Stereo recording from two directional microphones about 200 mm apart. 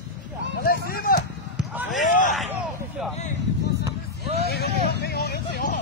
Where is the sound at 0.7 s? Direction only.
50° left (ahead or behind).